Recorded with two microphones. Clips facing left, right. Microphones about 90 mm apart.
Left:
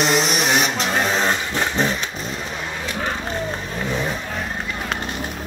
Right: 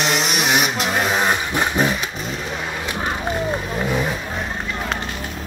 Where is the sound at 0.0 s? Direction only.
Centre (ahead or behind).